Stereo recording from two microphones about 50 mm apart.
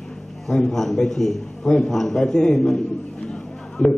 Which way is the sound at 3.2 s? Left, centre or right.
Centre.